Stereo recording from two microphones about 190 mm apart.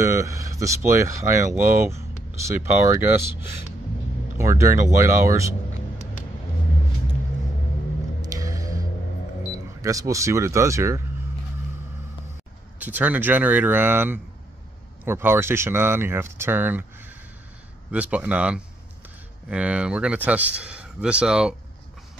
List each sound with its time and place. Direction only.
0.0 s speech: 15° right (ahead or behind)
4.4 s speech: 15° right (ahead or behind)
8.2 s music: 15° right (ahead or behind)
9.8 s speech: 15° right (ahead or behind)
12.7 s speech: 10° right (ahead or behind)